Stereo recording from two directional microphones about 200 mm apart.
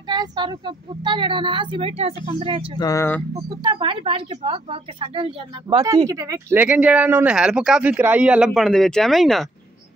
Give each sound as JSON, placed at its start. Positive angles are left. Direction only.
{"t": 0.1, "sound": "speech", "side_deg": -20}
{"t": 2.8, "sound": "speech", "side_deg": 15}
{"t": 3.6, "sound": "speech", "side_deg": -25}